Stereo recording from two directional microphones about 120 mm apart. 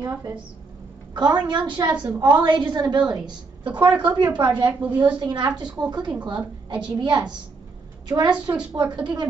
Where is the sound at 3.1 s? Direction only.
5° right (ahead or behind).